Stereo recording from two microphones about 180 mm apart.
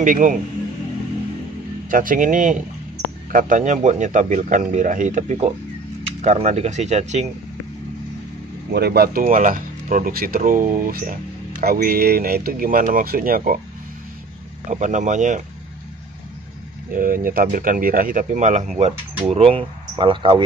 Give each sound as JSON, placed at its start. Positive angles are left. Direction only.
{"t": 0.0, "sound": "a man's voice", "side_deg": -50}
{"t": 1.9, "sound": "a man's voice", "side_deg": -50}
{"t": 8.7, "sound": "speech", "side_deg": -65}
{"t": 9.2, "sound": "a man's voice", "side_deg": -45}
{"t": 14.7, "sound": "a man's voice", "side_deg": -45}
{"t": 16.9, "sound": "a man's voice", "side_deg": -50}